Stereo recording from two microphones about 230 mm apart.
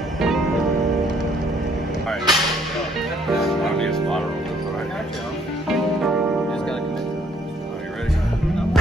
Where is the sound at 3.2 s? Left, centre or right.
Centre.